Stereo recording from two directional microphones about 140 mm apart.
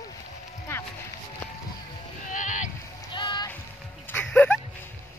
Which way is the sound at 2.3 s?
65° left (ahead or behind).